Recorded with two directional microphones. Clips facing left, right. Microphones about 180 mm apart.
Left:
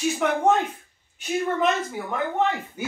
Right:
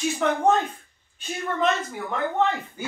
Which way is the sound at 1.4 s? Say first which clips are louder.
Left 1 dB; 15° left (ahead or behind).